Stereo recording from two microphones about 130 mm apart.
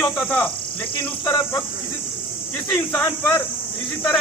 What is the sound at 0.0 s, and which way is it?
Speech, 5° left (ahead or behind).